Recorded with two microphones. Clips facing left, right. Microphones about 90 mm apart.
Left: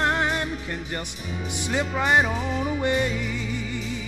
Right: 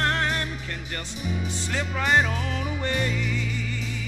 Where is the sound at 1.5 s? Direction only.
15° left (ahead or behind).